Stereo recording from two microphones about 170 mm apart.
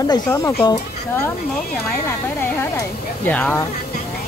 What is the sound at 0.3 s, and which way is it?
Speech, 10° left (ahead or behind).